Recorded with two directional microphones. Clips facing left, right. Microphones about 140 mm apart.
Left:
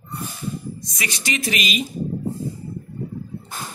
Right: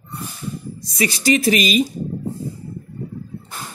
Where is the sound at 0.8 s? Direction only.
35° right (ahead or behind).